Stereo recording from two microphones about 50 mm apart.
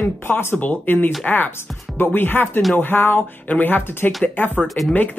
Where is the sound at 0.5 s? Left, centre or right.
Left.